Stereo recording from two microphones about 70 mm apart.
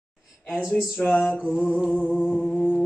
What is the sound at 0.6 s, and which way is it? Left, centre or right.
Female singing, centre.